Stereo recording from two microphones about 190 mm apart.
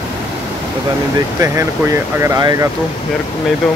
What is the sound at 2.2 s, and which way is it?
Speech, 20° right (ahead or behind).